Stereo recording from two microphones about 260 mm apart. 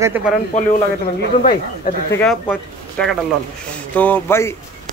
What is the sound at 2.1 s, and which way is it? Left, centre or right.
Speech, centre.